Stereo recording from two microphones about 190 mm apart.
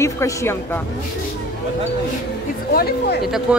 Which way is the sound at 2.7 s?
60° left (ahead or behind).